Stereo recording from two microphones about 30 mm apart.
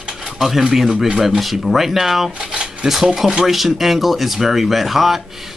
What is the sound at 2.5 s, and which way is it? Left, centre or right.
Shuffling cards, right.